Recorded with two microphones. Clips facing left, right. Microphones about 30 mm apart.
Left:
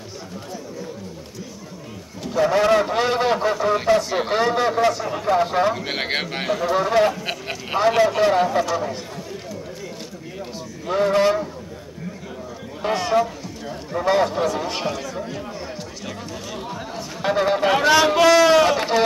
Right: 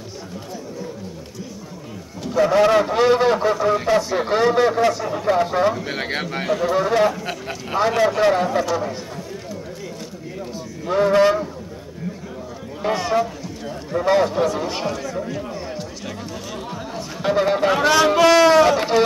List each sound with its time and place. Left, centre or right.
2.2 s a man's voice: centre
4.1 s a sound: centre
4.4 s a man's voice: centre
5.8 s speech: left
6.5 s a man's voice: centre
10.9 s a man's voice: centre
12.8 s a man's voice: centre
16.5 s a sound: centre
18.2 s a man's voice: centre
18.6 s a man's voice: centre